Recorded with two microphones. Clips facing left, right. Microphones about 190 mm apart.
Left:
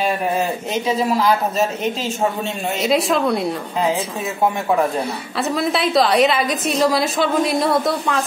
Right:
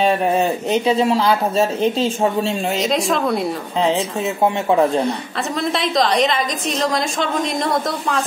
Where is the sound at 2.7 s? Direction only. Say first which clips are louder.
Left 4 dB; 5° left (ahead or behind).